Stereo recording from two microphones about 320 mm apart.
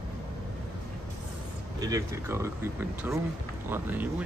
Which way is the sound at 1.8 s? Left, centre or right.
Centre.